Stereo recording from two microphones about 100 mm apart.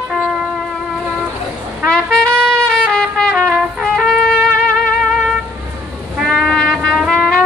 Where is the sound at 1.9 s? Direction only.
10° left (ahead or behind).